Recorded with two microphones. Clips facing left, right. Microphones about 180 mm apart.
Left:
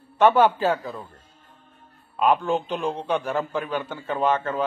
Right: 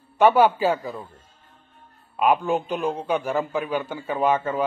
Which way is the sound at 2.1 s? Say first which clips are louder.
Even; 10° right (ahead or behind).